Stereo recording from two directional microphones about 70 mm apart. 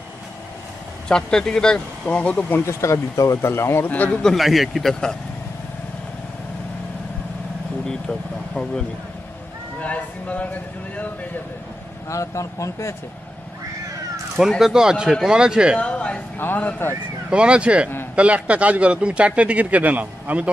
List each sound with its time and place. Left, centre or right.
1.0 s speech: centre
2.6 s speech: left
3.9 s a man's voice: left
4.2 s speech: centre
7.8 s speech: centre
9.8 s speech: centre
12.1 s speech: left
14.6 s speech: centre
15.8 s speech: centre
16.3 s a man's voice: left
17.3 s speech: centre